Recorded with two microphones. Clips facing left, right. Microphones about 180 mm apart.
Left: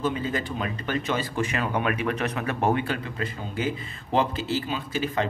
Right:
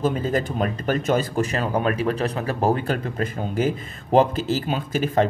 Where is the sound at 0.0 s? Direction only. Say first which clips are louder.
Right 5 dB; 40° right (ahead or behind).